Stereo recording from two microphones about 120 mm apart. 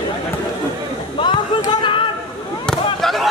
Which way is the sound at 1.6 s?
45° left (ahead or behind).